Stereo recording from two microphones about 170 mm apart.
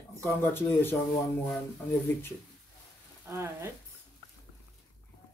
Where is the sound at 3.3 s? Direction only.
15° right (ahead or behind).